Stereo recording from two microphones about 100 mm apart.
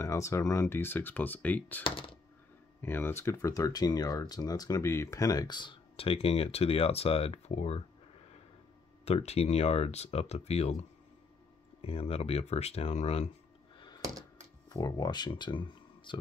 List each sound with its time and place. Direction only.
0.0 s speech: 30° left (ahead or behind)
1.8 s speech: 60° left (ahead or behind)
2.8 s speech: 25° left (ahead or behind); by 7.8 s 90° left
9.0 s speech: 90° left
11.8 s speech: 85° left
13.7 s a sound: 45° left (ahead or behind)
14.7 s speech: 40° left (ahead or behind); by 16.2 s 55° left (ahead or behind)